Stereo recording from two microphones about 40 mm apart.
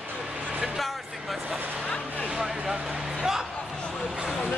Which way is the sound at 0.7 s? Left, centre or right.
Centre.